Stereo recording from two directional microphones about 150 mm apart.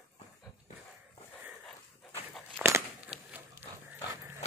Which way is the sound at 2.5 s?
15° right (ahead or behind).